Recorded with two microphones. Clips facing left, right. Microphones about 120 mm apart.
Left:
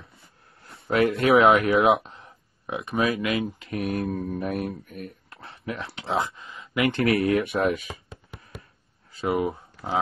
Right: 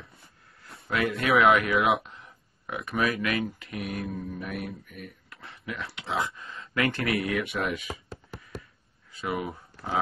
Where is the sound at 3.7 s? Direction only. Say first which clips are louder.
Left 7 dB; 45° left (ahead or behind); by 7.0 s 15° left (ahead or behind).